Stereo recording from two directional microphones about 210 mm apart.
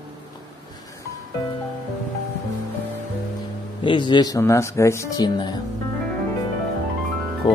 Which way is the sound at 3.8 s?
20° left (ahead or behind).